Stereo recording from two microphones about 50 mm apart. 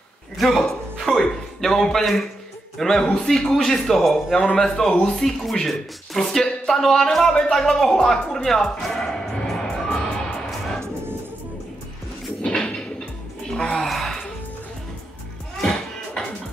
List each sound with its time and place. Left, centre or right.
0.4 s a man's voice: centre
0.9 s music: centre
1.6 s a man's voice: centre
8.9 s music: centre
12.4 s a sound: centre
13.7 s a sound: centre
16.2 s music: centre